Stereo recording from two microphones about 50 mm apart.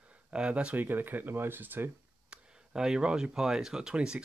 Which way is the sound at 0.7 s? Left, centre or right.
Right.